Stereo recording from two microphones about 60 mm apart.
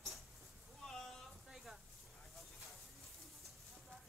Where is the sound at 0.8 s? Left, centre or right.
Centre.